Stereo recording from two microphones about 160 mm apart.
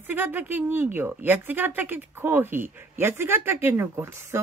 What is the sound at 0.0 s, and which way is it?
Speech, 10° right (ahead or behind).